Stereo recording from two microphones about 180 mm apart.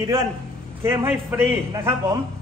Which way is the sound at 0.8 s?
15° right (ahead or behind).